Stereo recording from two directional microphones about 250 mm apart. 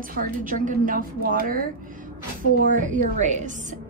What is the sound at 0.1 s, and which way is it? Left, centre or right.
A woman's voice, right.